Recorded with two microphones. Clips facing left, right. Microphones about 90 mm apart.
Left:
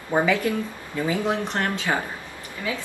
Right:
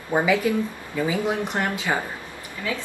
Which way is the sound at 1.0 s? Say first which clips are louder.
Even; 10° right (ahead or behind).